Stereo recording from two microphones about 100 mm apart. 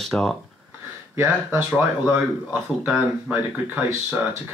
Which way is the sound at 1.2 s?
20° right (ahead or behind).